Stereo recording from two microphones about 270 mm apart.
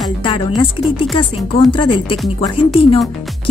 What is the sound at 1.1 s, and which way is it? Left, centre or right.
A woman's voice, centre.